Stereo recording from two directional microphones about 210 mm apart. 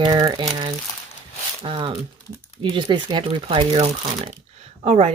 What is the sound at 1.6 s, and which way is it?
Speech, 25° right (ahead or behind).